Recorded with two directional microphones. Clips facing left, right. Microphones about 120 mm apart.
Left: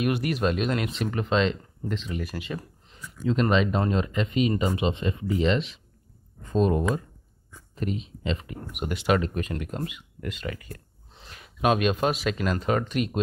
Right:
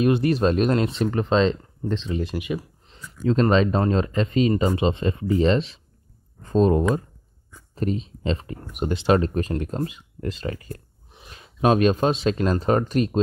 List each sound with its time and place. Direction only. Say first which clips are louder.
0.0 s speech: right 6 dB; 30° right (ahead or behind)
3.3 s speech: right 4 dB; 35° right (ahead or behind)
11.1 s speech: right 7 dB; 20° right (ahead or behind)